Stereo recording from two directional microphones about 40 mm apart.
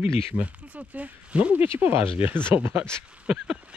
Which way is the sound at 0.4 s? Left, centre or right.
Right.